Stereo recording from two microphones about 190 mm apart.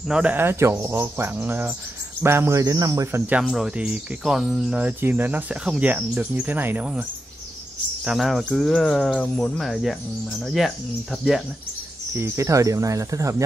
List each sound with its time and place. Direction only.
0.1 s speech: 5° right (ahead or behind)
12.2 s speech: 15° right (ahead or behind)